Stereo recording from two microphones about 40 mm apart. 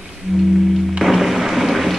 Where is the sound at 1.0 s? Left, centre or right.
Centre.